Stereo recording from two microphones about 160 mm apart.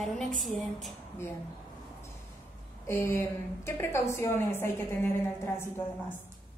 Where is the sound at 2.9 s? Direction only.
15° left (ahead or behind).